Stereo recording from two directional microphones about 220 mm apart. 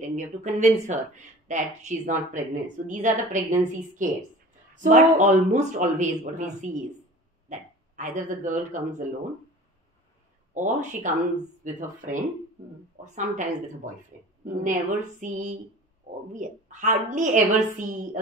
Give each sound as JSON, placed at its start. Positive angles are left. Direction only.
{"t": 0.1, "sound": "a man's voice", "side_deg": -35}
{"t": 10.5, "sound": "speech", "side_deg": -35}